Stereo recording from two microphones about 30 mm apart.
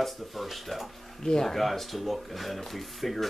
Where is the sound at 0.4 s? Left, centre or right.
Centre.